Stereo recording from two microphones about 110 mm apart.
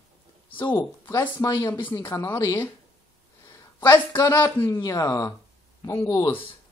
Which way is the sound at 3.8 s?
25° left (ahead or behind).